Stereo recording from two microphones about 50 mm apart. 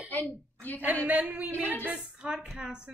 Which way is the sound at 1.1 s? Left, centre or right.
Right.